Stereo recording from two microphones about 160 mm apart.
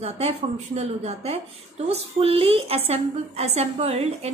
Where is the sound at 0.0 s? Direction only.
40° right (ahead or behind).